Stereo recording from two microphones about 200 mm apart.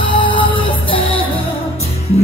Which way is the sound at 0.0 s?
25° left (ahead or behind).